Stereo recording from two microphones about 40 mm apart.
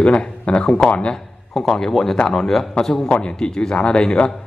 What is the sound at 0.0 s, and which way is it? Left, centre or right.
A man's voice, left.